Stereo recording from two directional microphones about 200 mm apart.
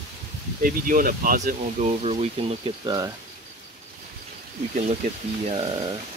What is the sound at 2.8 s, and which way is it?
Speech, 15° right (ahead or behind).